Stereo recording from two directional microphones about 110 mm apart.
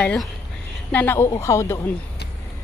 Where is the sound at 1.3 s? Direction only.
30° left (ahead or behind).